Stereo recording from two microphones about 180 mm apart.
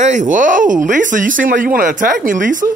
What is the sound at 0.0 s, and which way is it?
Speech, 45° right (ahead or behind).